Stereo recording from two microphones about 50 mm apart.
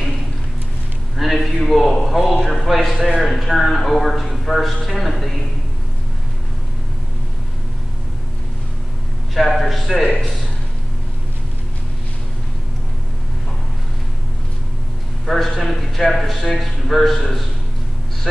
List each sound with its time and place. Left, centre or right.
1.1 s a man's voice: centre
9.3 s a man's voice: centre
15.2 s a man's voice: centre